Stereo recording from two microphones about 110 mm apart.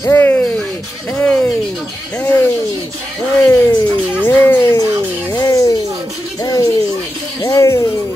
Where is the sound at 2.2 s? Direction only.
20° left (ahead or behind).